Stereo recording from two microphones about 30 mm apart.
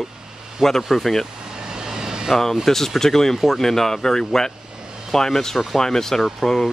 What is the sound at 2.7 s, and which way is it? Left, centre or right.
Speech, centre.